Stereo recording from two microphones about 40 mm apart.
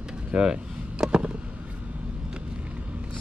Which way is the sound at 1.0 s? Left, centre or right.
Right.